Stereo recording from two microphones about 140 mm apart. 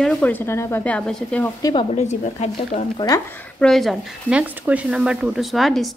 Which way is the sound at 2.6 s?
40° left (ahead or behind).